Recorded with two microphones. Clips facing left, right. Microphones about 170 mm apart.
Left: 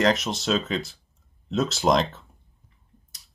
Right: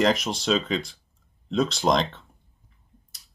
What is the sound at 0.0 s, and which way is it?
Speech, centre (ahead or behind).